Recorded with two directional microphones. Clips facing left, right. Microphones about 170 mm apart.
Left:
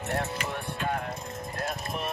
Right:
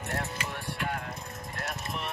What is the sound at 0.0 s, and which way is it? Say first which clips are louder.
Music: left 4 dB; 25° left (ahead or behind).